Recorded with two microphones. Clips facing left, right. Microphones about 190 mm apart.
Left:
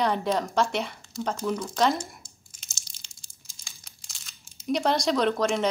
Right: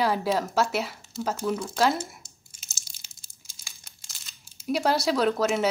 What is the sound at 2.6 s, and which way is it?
Crumpling, 5° right (ahead or behind).